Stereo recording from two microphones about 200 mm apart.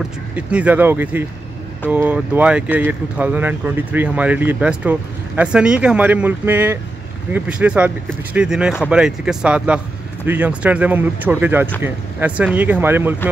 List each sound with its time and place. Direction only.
0.4 s speech: 5° right (ahead or behind)